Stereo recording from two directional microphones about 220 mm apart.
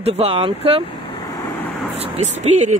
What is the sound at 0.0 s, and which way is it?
Speech, 25° right (ahead or behind).